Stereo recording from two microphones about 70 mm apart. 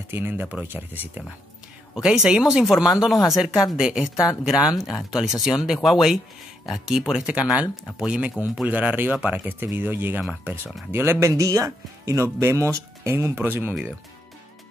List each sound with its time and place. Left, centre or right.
0.1 s speech: right
2.0 s speech: centre; by 13.7 s right